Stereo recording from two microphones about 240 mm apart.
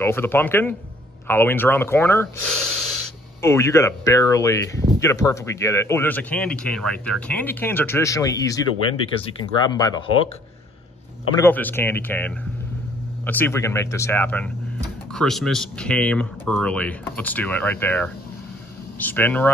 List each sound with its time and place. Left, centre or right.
0.0 s a man's voice: centre
3.4 s a man's voice: centre
11.3 s a man's voice: centre